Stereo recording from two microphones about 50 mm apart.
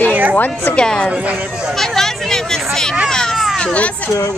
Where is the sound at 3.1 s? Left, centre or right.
Centre.